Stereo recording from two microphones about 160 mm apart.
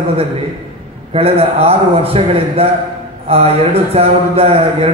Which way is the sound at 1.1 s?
40° right (ahead or behind).